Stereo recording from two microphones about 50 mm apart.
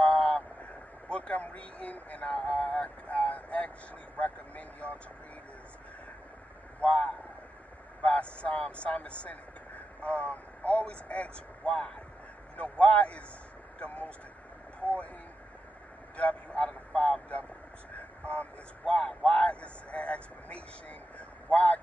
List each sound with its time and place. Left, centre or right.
0.0 s vehicle: left
2.5 s speech: left
6.8 s speech: left
16.2 s speech: left